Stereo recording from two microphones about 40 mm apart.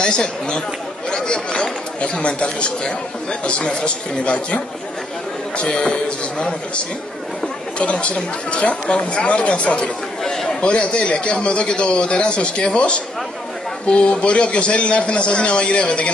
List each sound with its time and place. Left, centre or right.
0.0 s a man's voice: left
7.8 s speech: left
10.2 s chatter: centre
10.6 s a man's voice: left